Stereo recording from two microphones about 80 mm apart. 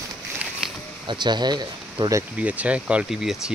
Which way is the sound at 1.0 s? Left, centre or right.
Right.